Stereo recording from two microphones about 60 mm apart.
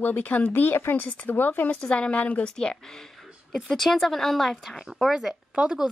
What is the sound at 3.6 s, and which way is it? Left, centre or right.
A woman's voice, centre.